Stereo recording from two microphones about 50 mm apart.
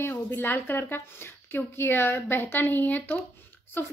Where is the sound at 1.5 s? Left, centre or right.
Left.